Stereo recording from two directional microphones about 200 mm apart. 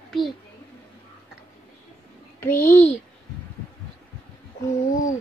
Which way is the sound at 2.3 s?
10° left (ahead or behind).